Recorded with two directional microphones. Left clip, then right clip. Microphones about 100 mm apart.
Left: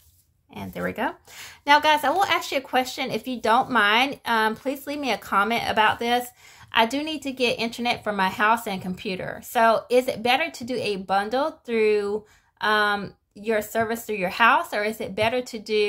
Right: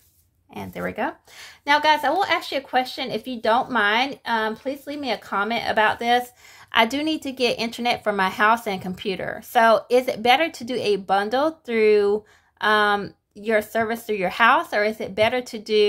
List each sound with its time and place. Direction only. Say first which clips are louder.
0.7 s speech: even; 30° right (ahead or behind)
5.9 s speech: right 2 dB; 30° right (ahead or behind)
6.7 s speech: right 2 dB; 50° right (ahead or behind)